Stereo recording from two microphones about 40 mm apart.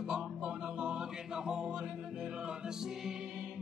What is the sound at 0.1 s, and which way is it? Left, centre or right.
Music, centre.